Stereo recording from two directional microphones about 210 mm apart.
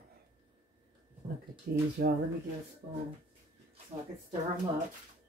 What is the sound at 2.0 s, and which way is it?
Speech, 45° right (ahead or behind).